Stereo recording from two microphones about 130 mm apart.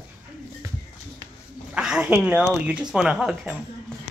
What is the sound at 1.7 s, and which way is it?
Speech, 5° right (ahead or behind).